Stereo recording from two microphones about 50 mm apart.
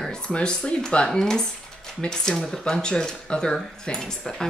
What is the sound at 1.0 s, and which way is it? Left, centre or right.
Speech, centre.